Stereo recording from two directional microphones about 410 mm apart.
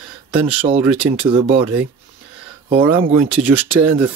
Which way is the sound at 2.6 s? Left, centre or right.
Centre.